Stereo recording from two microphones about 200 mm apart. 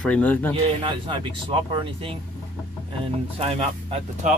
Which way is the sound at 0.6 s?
25° right (ahead or behind).